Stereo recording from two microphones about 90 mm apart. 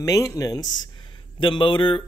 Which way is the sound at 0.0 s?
35° left (ahead or behind).